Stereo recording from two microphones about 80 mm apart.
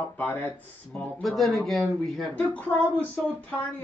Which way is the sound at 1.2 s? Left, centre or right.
Centre.